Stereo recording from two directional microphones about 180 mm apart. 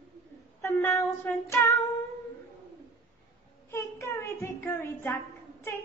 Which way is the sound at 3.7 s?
15° left (ahead or behind).